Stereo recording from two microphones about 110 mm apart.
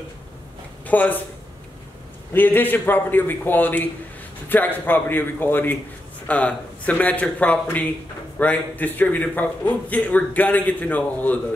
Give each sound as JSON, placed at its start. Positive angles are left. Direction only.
{"t": 0.8, "sound": "speech", "side_deg": 15}
{"t": 2.3, "sound": "a man's voice", "side_deg": 20}